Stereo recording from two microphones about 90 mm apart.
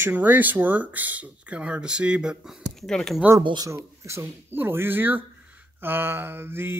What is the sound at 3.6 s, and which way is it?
Speech, 30° right (ahead or behind).